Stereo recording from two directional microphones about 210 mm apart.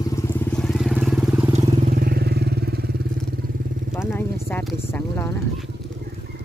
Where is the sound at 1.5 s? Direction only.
40° right (ahead or behind).